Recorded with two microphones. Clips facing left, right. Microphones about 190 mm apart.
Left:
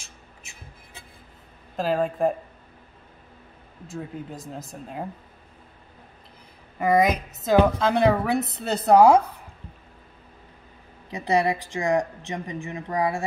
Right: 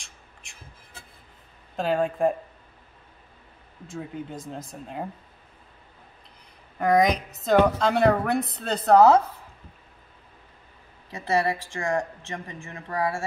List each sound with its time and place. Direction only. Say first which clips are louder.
0.0 s music: left 3 dB; 5° left (ahead or behind)
1.8 s a woman's voice: even; centre (ahead or behind)
3.8 s a woman's voice: even; centre (ahead or behind)
6.8 s a woman's voice: even; 5° left (ahead or behind)
11.1 s speech: left 2 dB; 15° left (ahead or behind)